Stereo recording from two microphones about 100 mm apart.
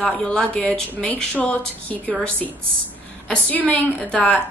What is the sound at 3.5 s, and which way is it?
Speech, 15° left (ahead or behind).